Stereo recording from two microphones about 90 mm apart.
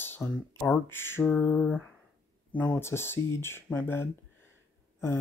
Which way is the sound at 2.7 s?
25° left (ahead or behind).